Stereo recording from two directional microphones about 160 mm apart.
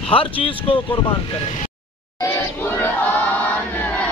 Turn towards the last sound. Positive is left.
turn(degrees=10)  # may be behind; listen again after turning